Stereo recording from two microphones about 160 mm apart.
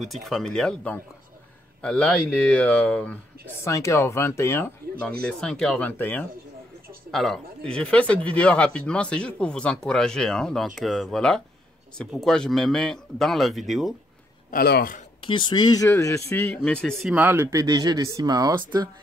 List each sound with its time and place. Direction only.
0.0 s speech: centre (ahead or behind)
3.6 s speech: 20° left (ahead or behind)
5.2 s speech: 5° left (ahead or behind)
14.5 s a man's voice: 75° left (ahead or behind)
15.2 s speech: 30° left (ahead or behind)
16.4 s speech: 5° left (ahead or behind)
17.1 s speech: 15° right (ahead or behind)